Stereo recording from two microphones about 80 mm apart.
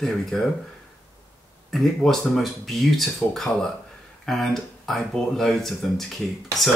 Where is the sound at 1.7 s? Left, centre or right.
Centre.